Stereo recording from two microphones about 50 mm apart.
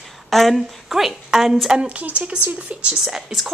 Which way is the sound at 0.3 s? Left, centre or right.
Centre.